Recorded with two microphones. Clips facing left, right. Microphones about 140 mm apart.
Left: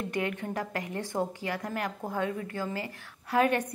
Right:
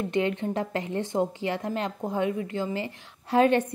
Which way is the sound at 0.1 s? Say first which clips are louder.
Right 6 dB; 25° right (ahead or behind).